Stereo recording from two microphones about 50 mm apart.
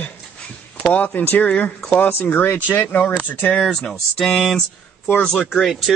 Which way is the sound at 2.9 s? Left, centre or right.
Left.